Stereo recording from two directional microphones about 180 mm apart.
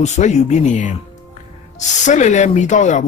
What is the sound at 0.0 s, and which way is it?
Speech, 40° left (ahead or behind).